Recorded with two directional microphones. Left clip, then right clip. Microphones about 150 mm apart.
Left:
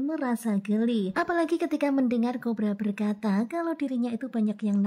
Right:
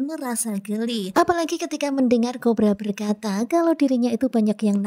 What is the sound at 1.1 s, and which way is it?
Speech, 35° right (ahead or behind).